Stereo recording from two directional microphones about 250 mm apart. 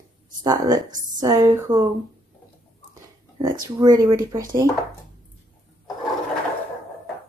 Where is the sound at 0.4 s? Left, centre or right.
Centre.